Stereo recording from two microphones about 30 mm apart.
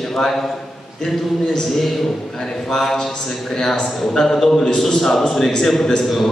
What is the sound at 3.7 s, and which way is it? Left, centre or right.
A man's voice, centre.